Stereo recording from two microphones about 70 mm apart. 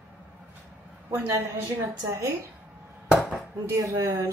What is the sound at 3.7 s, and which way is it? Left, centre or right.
Speech, right.